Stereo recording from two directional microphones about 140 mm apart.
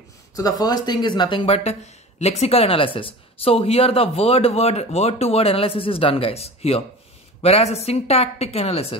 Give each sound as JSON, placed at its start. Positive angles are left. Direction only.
{"t": 0.4, "sound": "speech", "side_deg": 25}